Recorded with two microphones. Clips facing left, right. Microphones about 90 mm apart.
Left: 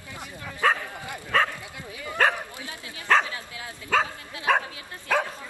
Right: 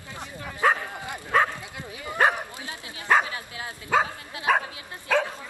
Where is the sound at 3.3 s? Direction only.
25° right (ahead or behind).